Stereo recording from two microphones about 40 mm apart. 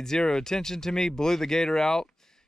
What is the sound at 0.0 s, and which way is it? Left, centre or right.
Speech, centre.